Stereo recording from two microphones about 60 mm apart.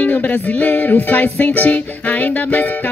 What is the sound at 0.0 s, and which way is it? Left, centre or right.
Music, left.